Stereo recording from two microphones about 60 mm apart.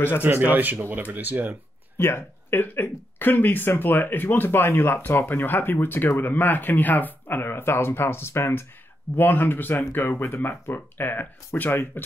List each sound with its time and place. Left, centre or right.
0.2 s speech: right
2.0 s speech: left
5.0 s speech: left
9.1 s speech: left